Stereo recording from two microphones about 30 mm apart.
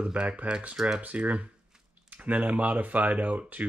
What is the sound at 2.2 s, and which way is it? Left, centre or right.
Speech, right.